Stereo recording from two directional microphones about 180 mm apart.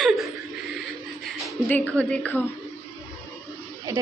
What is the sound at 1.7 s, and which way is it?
Speech, 5° left (ahead or behind).